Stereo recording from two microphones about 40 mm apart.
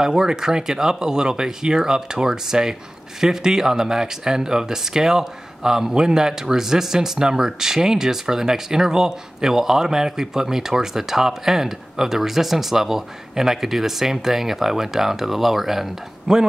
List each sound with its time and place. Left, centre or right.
0.0 s speech: centre